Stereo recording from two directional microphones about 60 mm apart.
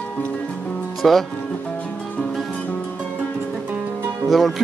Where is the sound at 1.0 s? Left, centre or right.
Centre.